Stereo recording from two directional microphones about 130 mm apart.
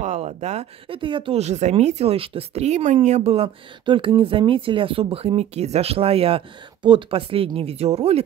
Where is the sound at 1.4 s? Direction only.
60° right (ahead or behind).